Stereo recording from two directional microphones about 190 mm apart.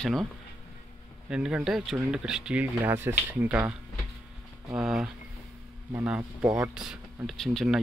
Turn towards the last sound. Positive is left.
turn(degrees=0)  # may be behind; listen again after turning